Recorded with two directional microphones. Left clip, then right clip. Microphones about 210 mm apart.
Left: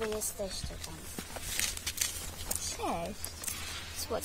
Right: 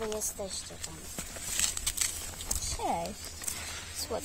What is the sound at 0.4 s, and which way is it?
Speech, 10° right (ahead or behind).